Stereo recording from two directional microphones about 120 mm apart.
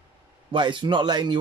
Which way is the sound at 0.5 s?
40° right (ahead or behind).